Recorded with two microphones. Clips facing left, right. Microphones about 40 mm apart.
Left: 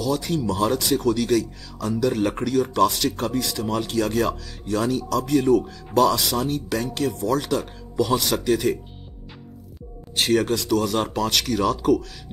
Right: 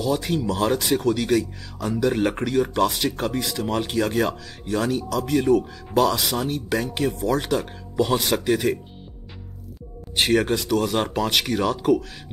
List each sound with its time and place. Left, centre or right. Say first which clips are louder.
0.0 s speech: even; centre
10.1 s speech: right 1 dB; centre